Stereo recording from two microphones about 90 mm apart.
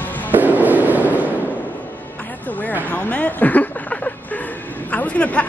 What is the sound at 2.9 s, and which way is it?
Speech, 15° left (ahead or behind).